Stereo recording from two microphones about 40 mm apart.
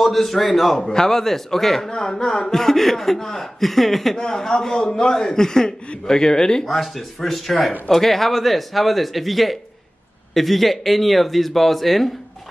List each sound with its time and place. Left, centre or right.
0.0 s speech: centre
0.7 s speech: centre
1.9 s speech: centre
6.6 s speech: centre